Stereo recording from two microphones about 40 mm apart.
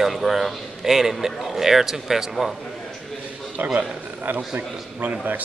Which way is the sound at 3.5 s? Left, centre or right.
Right.